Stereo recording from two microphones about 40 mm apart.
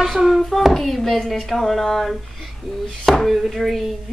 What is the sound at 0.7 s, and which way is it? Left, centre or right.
Speech, centre.